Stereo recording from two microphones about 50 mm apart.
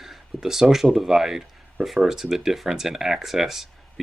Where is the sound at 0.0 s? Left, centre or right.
Centre.